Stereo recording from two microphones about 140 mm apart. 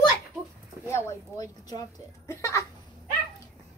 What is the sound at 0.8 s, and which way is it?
Speech, 20° left (ahead or behind).